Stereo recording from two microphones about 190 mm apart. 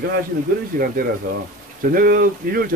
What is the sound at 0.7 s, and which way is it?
Speech, 50° right (ahead or behind).